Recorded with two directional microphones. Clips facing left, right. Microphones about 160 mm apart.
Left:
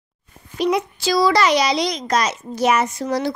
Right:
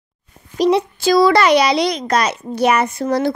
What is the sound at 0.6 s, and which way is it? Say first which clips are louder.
Speech: right 5 dB; 30° right (ahead or behind).